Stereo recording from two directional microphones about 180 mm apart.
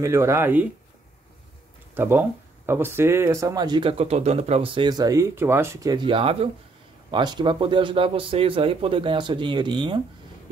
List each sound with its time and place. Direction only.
0.0 s speech: 15° right (ahead or behind)
2.0 s speech: 15° right (ahead or behind)